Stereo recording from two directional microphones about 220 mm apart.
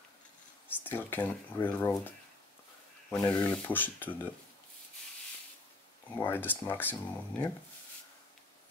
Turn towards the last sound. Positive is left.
turn(degrees=10)  # may be behind; listen again after turning